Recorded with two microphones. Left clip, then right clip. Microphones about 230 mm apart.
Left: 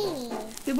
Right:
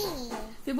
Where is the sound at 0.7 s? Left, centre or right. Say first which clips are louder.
Left 3 dB; centre.